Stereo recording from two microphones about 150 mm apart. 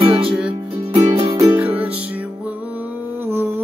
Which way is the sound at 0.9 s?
35° right (ahead or behind).